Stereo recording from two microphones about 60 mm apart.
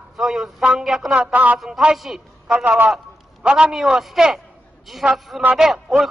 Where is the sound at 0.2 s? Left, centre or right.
Centre.